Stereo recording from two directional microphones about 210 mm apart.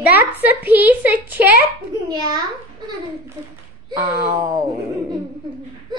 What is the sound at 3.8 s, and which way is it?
Speech, 20° right (ahead or behind).